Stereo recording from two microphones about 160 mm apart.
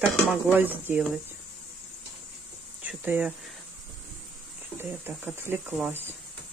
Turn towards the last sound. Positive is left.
turn(degrees=-15)  # may be behind; listen again after turning